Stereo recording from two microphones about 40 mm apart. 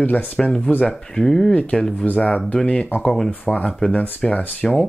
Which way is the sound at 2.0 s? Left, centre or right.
Left.